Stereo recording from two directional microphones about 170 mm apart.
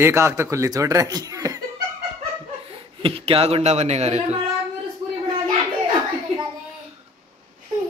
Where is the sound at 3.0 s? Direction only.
35° right (ahead or behind).